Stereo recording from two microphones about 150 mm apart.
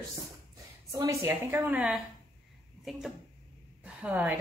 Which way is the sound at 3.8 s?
10° right (ahead or behind).